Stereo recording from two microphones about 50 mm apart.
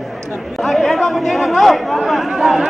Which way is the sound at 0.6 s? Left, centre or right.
Centre.